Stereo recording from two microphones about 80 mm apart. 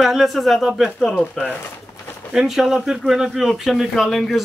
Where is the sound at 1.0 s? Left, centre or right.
Centre.